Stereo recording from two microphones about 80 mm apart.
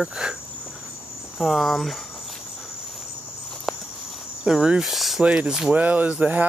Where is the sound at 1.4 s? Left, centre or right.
Centre.